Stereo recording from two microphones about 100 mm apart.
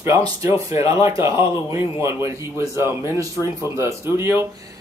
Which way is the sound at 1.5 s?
30° right (ahead or behind).